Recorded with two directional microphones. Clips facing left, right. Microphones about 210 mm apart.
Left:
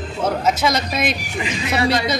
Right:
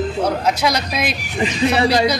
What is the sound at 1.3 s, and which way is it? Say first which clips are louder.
Speech: right 7 dB; 30° right (ahead or behind).